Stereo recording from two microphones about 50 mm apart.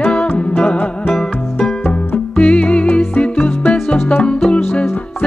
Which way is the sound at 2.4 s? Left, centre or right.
Left.